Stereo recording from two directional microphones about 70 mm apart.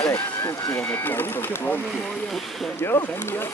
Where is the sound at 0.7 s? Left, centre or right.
Left.